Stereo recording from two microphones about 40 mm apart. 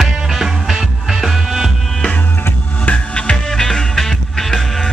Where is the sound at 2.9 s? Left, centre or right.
Left.